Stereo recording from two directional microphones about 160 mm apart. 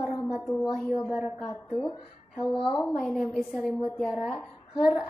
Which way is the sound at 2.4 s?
30° left (ahead or behind).